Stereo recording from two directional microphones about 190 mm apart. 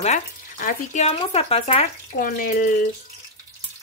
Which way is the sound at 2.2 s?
45° left (ahead or behind).